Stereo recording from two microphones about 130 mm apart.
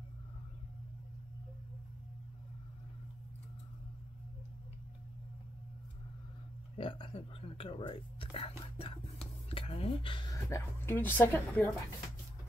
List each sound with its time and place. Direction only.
6.8 s speech: 40° left (ahead or behind)
10.3 s a woman's voice: 20° left (ahead or behind)